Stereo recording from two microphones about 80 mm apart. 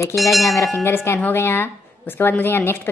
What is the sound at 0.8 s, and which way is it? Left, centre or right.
A woman's voice, left.